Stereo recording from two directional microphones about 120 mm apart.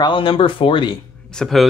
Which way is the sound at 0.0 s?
45° left (ahead or behind).